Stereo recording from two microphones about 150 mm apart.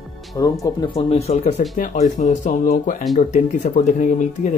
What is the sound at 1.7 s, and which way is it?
Speech, 60° left (ahead or behind).